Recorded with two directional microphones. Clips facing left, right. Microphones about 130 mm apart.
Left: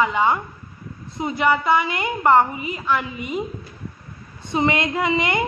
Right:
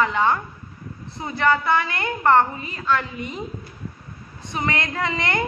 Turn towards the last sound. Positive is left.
turn(degrees=10)  # may be behind; listen again after turning